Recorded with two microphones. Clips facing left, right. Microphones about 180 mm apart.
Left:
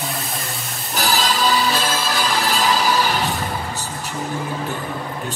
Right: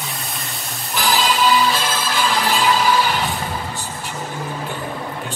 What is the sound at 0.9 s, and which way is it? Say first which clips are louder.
Music: right 2 dB; 40° left (ahead or behind).